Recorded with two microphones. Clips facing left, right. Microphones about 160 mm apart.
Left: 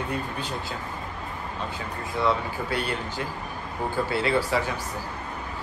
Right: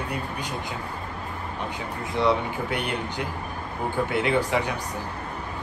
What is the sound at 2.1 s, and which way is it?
Speech, 20° right (ahead or behind).